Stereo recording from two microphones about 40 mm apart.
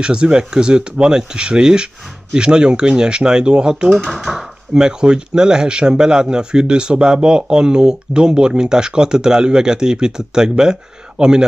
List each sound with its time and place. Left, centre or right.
0.0 s speech: right
4.1 s speech: centre
4.7 s speech: centre